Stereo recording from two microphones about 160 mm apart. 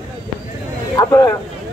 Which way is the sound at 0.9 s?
20° left (ahead or behind).